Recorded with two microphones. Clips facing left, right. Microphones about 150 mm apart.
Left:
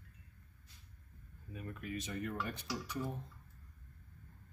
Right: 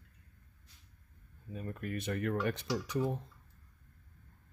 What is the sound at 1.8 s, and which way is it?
Speech, 55° right (ahead or behind).